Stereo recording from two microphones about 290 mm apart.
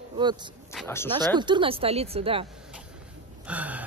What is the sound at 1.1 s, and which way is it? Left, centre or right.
Speech, centre.